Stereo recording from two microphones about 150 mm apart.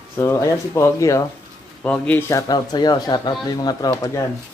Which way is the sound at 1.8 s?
10° left (ahead or behind).